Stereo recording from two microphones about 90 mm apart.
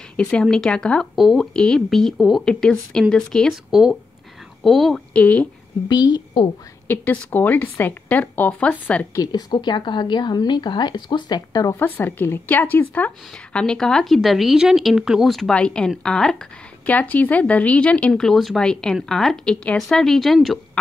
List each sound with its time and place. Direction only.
0.3 s speech: 5° left (ahead or behind)
1.1 s speech: centre (ahead or behind)
5.1 s speech: 15° left (ahead or behind)
5.9 s a woman's voice: 50° left (ahead or behind)
6.9 s speech: 25° left (ahead or behind)
9.1 s a woman's voice: 45° left (ahead or behind)
9.5 s speech: 60° left (ahead or behind)
11.7 s speech: 20° left (ahead or behind); by 20.3 s 5° left (ahead or behind)